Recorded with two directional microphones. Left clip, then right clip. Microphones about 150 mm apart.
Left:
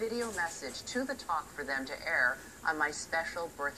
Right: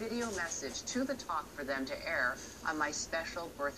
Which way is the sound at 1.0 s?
30° left (ahead or behind).